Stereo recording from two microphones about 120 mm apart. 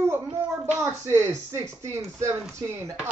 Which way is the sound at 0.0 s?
20° right (ahead or behind).